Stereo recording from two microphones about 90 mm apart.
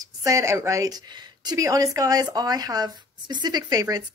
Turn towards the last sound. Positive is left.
turn(degrees=-45)  # may be behind; listen again after turning